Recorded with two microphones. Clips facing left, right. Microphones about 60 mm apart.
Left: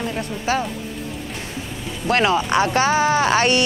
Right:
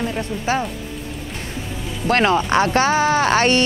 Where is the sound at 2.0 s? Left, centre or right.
Right.